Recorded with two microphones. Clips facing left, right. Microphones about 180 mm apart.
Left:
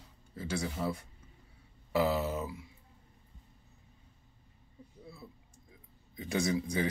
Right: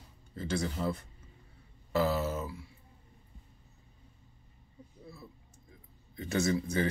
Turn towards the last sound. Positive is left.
turn(degrees=10)  # may be behind; listen again after turning